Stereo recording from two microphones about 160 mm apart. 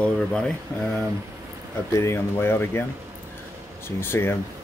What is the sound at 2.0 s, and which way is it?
Speech, 15° left (ahead or behind).